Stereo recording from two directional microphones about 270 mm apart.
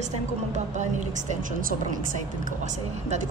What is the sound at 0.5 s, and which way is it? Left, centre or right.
A woman's voice, right.